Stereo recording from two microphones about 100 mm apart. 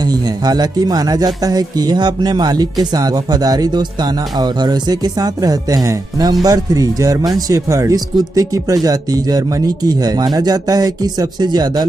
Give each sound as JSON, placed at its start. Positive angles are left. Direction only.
{"t": 0.0, "sound": "speech", "side_deg": -40}